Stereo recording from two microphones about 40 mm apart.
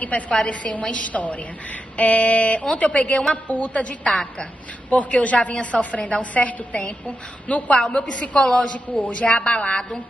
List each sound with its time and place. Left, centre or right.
0.0 s a woman's voice: left
7.7 s a woman's voice: left